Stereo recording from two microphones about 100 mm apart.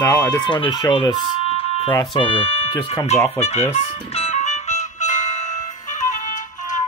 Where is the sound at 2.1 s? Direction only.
65° left (ahead or behind).